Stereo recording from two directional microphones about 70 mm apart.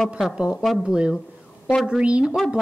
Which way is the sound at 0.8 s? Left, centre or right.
Centre.